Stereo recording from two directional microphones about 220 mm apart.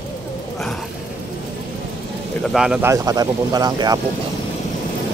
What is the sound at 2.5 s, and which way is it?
Speech, 5° right (ahead or behind).